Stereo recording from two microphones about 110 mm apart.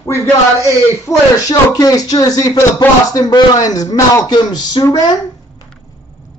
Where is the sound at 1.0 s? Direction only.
35° left (ahead or behind).